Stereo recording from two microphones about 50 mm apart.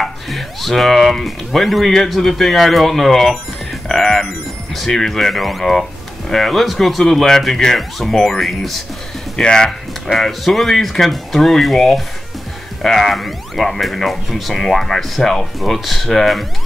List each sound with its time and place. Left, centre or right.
0.0 s speech: centre
9.4 s speech: centre
10.1 s speech: centre